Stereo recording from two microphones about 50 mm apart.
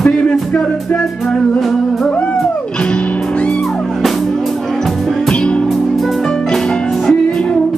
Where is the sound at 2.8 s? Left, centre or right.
Left.